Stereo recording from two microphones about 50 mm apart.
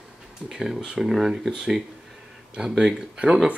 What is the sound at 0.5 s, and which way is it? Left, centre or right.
Speech, centre.